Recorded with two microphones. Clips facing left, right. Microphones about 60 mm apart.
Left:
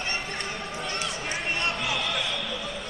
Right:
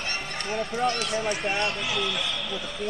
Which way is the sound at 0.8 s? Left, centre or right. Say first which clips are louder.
Right 7 dB; right.